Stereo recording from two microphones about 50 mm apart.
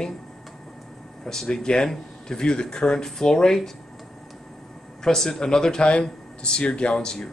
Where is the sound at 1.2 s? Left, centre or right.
Centre.